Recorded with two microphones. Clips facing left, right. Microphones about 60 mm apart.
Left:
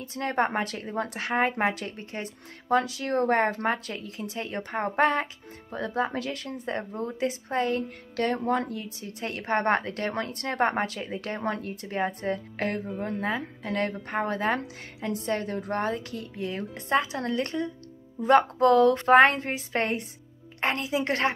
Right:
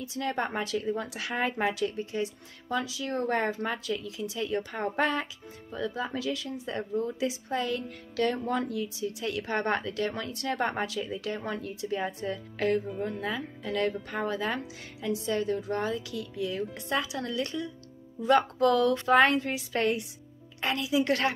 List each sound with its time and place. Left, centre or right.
0.0 s a woman's voice: left